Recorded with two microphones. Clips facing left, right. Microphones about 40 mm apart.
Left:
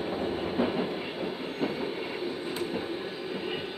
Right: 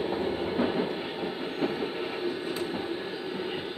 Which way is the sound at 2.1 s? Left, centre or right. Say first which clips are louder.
Right 2 dB; centre.